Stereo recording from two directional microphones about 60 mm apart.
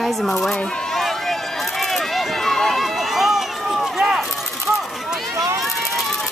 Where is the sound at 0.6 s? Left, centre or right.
Centre.